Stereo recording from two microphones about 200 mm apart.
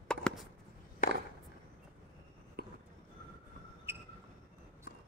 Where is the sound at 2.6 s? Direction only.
50° right (ahead or behind).